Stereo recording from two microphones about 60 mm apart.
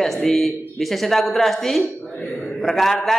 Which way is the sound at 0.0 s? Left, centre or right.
Centre.